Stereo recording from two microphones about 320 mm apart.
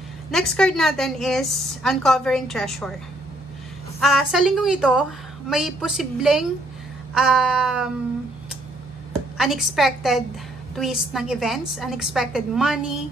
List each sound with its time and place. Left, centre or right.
0.3 s a woman's voice: centre
4.0 s a woman's voice: centre
9.4 s a woman's voice: centre